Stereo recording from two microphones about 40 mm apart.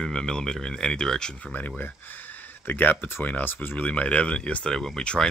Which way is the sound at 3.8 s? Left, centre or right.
Left.